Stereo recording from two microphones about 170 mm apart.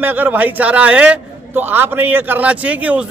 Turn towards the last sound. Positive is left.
turn(degrees=-10)  # may be behind; listen again after turning